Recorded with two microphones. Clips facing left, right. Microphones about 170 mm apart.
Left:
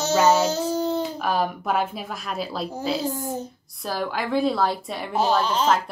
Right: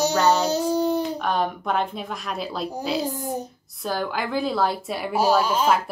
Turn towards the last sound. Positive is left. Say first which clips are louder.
# right 1 dB
turn(degrees=-10)  # may be behind; listen again after turning